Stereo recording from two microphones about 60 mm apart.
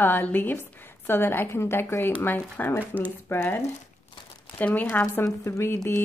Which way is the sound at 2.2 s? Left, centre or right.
Left.